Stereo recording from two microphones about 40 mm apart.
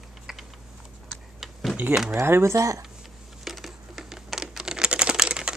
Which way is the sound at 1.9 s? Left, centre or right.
Right.